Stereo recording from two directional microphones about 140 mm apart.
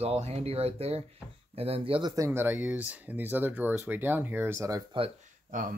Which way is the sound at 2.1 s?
20° right (ahead or behind).